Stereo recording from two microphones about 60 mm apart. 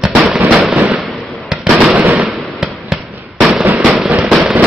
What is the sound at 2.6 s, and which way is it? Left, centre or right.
Fireworks, centre.